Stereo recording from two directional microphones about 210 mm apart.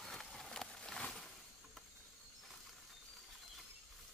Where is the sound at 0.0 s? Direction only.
5° left (ahead or behind).